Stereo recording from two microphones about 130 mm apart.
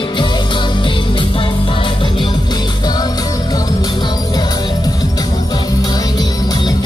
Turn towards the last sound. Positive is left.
turn(degrees=30)  # may be behind; listen again after turning